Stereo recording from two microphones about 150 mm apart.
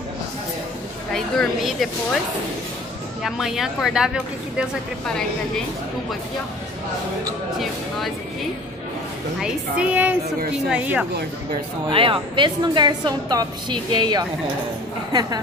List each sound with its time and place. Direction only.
1.1 s speech: 5° left (ahead or behind)
3.2 s speech: centre (ahead or behind)
9.4 s a woman's voice: 10° right (ahead or behind)
11.9 s a woman's voice: 35° right (ahead or behind)